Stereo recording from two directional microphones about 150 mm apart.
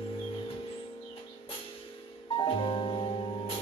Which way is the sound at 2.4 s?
35° left (ahead or behind).